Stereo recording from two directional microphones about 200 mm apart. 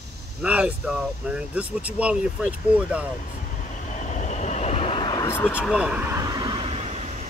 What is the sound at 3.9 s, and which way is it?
Vehicle, 40° left (ahead or behind).